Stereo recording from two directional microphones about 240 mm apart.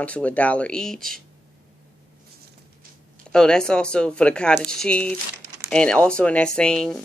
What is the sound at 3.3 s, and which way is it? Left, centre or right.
Speech, centre.